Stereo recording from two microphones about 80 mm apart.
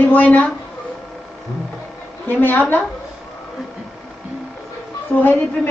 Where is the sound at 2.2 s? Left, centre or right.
Left.